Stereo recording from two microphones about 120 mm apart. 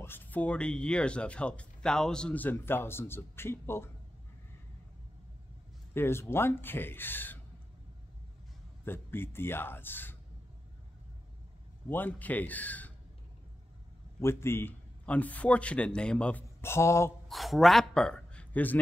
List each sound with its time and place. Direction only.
0.0 s speech: 15° left (ahead or behind)
5.9 s speech: 20° left (ahead or behind)
8.8 s speech: 20° left (ahead or behind)
11.9 s speech: 15° left (ahead or behind)
14.2 s speech: 20° left (ahead or behind)
17.3 s a man's voice: centre (ahead or behind)